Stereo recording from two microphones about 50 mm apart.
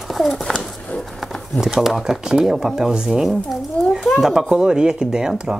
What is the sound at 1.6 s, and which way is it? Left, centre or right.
Speech, centre.